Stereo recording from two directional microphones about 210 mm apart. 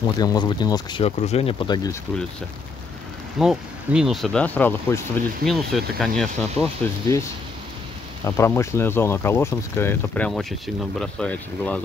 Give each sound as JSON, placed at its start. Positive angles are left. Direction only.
{"t": 0.2, "sound": "speech", "side_deg": 20}
{"t": 3.3, "sound": "speech", "side_deg": 0}
{"t": 8.2, "sound": "speech", "side_deg": 15}